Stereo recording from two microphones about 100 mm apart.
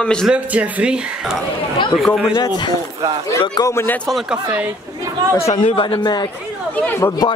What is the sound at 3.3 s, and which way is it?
Speech, 35° left (ahead or behind).